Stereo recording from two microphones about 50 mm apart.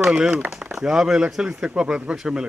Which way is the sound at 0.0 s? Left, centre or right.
Centre.